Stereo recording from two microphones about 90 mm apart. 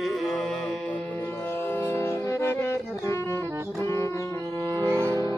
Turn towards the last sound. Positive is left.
turn(degrees=-30)  # may be behind; listen again after turning